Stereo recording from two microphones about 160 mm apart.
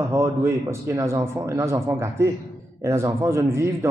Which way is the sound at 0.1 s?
15° right (ahead or behind).